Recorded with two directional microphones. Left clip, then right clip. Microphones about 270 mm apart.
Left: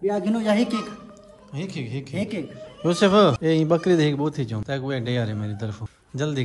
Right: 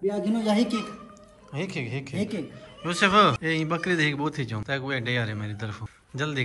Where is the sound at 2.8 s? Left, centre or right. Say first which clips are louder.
Left 2 dB; centre.